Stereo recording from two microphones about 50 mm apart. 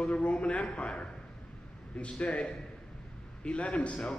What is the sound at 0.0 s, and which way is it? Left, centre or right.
Speech, left.